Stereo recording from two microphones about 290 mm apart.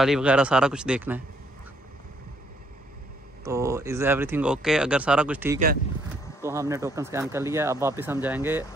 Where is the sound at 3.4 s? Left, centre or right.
Centre.